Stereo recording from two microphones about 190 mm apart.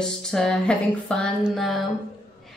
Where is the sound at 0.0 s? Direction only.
5° left (ahead or behind).